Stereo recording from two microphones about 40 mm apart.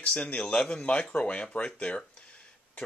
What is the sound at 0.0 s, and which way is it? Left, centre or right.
Speech, left.